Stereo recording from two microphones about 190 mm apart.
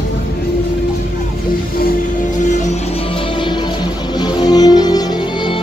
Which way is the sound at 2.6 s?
30° left (ahead or behind).